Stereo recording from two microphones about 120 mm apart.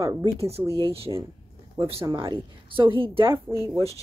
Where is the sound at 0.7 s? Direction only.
55° right (ahead or behind).